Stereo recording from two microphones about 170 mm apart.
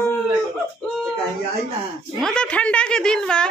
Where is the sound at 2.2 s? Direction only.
5° left (ahead or behind).